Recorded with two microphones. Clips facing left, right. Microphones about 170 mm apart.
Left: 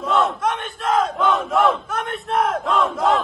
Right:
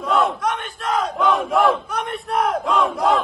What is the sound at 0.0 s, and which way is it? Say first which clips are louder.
Battle cry: even; centre (ahead or behind).